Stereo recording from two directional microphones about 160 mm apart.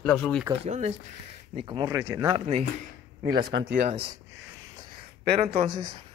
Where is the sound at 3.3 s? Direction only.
80° right.